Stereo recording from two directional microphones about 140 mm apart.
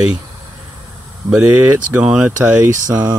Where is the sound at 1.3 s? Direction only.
10° right (ahead or behind).